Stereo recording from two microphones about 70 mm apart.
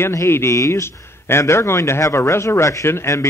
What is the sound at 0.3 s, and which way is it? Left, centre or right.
A man's voice, left.